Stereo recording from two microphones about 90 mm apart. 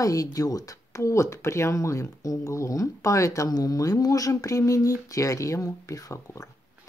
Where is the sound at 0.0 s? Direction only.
40° left (ahead or behind).